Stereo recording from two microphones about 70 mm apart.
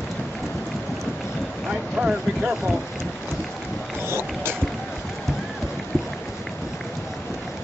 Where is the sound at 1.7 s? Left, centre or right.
Centre.